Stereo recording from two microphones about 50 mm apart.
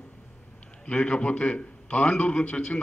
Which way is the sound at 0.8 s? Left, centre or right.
Left.